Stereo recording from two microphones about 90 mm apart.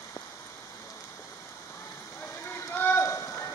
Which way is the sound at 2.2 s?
25° left (ahead or behind).